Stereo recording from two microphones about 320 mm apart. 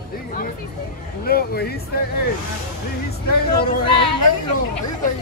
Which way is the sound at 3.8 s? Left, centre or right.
Centre.